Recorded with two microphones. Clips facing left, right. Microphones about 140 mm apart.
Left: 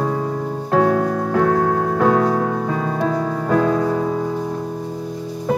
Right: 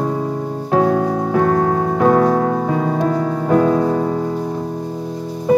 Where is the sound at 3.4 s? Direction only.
20° right (ahead or behind).